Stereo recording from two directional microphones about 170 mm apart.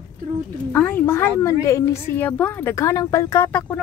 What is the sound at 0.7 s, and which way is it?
Speech, 10° left (ahead or behind).